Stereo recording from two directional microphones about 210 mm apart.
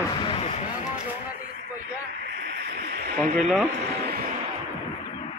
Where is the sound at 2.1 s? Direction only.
55° right (ahead or behind).